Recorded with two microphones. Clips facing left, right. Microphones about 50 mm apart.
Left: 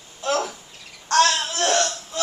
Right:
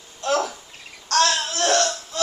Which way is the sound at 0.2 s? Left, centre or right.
Centre.